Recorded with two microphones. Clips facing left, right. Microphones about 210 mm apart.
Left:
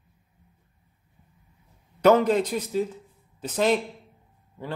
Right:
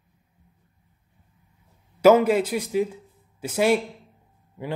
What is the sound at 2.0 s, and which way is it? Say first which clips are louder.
A man's voice: right 2 dB; 5° right (ahead or behind).